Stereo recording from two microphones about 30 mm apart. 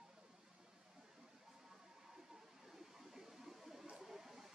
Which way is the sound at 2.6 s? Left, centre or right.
Centre.